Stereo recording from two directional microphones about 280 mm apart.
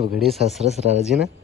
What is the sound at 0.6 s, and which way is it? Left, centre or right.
Speech, right.